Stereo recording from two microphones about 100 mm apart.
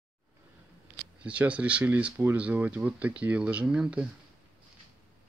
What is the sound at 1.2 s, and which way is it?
Speech, 15° right (ahead or behind).